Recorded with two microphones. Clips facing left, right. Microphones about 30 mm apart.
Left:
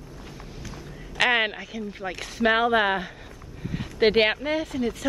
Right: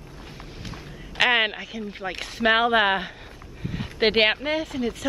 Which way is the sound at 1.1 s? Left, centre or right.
Centre.